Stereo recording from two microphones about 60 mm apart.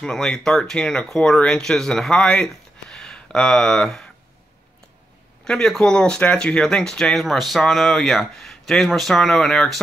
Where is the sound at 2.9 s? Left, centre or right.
Centre.